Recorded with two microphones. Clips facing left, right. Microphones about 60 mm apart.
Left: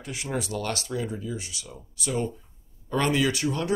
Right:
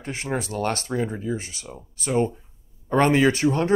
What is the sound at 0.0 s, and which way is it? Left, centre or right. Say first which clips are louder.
Speech: right 3 dB; right.